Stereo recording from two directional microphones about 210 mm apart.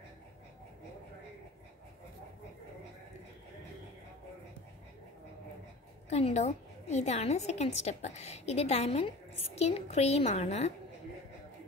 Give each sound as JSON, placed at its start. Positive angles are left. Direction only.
{"t": 6.0, "sound": "a woman's voice", "side_deg": 30}